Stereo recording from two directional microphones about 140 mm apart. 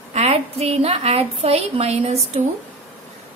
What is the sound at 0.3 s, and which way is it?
A woman's voice, 40° right (ahead or behind).